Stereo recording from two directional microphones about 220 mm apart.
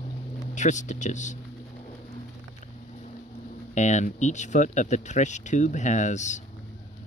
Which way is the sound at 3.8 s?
35° left (ahead or behind).